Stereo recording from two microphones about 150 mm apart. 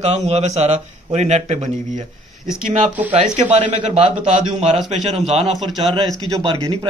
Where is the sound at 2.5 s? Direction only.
10° right (ahead or behind).